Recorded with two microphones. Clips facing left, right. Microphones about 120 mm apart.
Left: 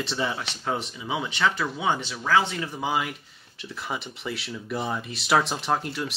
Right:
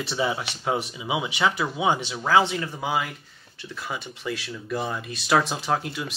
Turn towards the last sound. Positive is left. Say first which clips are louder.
# even
turn(degrees=0)  # may be behind; listen again after turning